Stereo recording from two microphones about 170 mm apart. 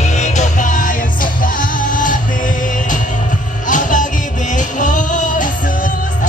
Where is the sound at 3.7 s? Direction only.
50° left (ahead or behind).